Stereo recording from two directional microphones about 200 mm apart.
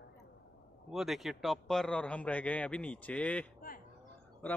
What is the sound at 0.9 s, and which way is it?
Speech, centre (ahead or behind).